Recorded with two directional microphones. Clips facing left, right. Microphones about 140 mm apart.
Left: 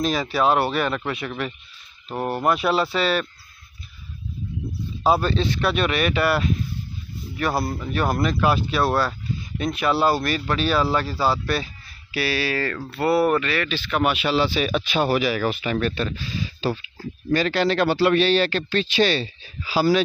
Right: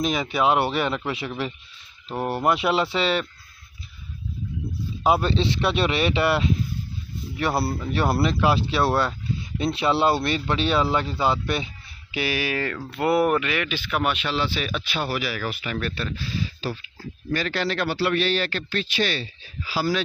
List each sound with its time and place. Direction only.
0.0 s speech: 20° right (ahead or behind)
5.0 s speech: 20° right (ahead or behind)
14.0 s speech: 10° left (ahead or behind); by 19.2 s 30° left (ahead or behind)
19.7 s speech: 15° left (ahead or behind)